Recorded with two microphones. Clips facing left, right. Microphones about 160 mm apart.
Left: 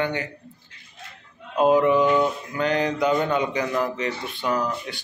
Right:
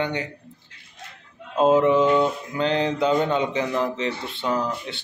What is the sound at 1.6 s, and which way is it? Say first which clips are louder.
Mantra: right 1 dB; 25° right (ahead or behind).